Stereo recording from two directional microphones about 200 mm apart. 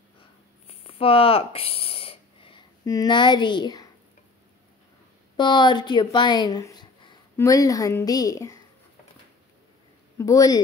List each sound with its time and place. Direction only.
0.7 s a sound: 30° left (ahead or behind)
5.4 s a woman's voice: 20° left (ahead or behind)
10.1 s speech: 15° left (ahead or behind)